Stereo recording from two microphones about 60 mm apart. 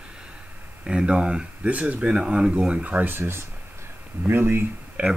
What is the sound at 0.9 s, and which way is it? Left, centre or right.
Speech, centre.